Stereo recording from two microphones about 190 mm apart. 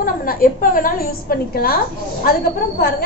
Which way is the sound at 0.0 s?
45° left (ahead or behind).